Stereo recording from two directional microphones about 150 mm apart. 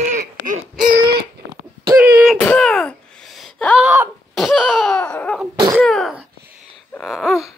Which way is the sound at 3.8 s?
15° right (ahead or behind).